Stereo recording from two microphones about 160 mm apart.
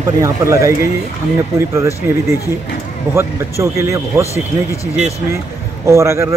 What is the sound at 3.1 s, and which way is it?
A man's voice, 15° right (ahead or behind).